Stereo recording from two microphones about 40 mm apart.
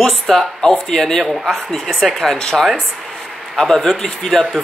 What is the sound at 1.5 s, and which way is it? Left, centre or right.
Speech, centre.